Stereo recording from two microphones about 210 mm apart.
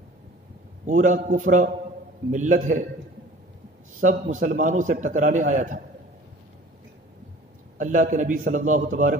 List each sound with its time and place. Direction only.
0.8 s a man's voice: 35° right (ahead or behind)
4.0 s a man's voice: 40° right (ahead or behind)
7.8 s a man's voice: 40° right (ahead or behind)